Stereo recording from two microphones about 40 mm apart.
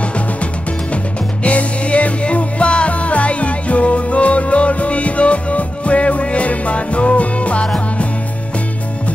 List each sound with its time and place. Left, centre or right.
1.4 s music: left